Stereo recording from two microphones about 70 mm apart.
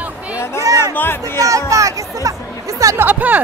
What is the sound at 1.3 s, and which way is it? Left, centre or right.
Speech, right.